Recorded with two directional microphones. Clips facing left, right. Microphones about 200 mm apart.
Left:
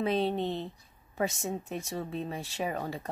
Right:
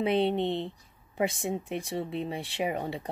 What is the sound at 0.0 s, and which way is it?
Speech, 25° right (ahead or behind).